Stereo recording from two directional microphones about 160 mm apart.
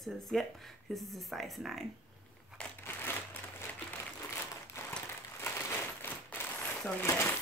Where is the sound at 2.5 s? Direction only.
5° left (ahead or behind).